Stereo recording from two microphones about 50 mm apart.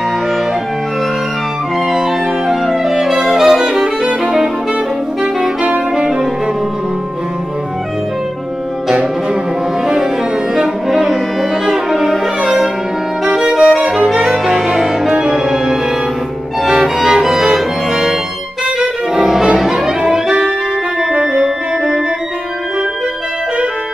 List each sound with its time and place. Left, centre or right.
1.9 s music: centre
5.2 s saxophone: right
8.8 s music: centre
10.5 s music: centre
19.1 s music: centre